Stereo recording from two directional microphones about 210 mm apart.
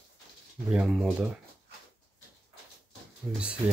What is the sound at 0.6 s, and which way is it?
Speech, centre (ahead or behind).